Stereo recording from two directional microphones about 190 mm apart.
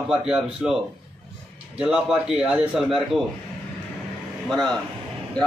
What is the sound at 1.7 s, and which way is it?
A man's voice, 5° right (ahead or behind).